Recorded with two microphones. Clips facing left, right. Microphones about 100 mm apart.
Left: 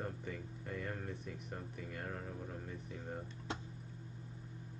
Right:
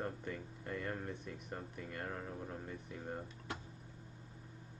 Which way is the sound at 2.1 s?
15° right (ahead or behind).